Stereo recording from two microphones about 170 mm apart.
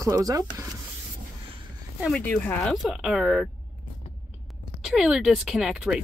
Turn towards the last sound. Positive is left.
turn(degrees=-5)  # may be behind; listen again after turning